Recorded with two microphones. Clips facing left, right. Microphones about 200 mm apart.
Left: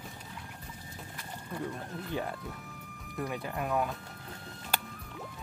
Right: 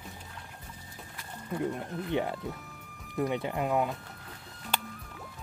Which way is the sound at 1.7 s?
20° right (ahead or behind).